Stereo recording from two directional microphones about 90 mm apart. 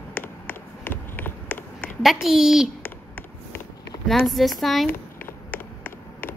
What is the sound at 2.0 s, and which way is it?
Speech, 5° right (ahead or behind).